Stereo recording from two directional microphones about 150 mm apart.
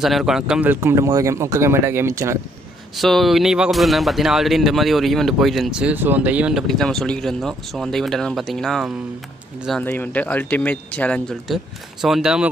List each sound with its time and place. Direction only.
0.0 s speech: centre (ahead or behind); by 2.3 s 20° right (ahead or behind)
3.0 s speech: centre (ahead or behind)